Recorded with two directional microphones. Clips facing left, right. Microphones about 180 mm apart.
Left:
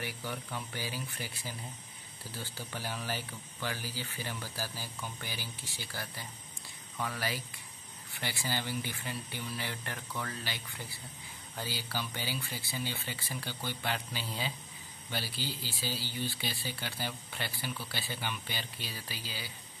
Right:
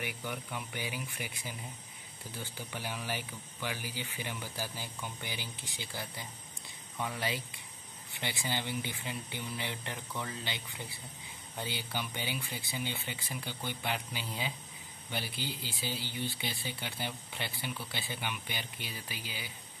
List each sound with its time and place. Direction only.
0.3 s speech: 10° right (ahead or behind)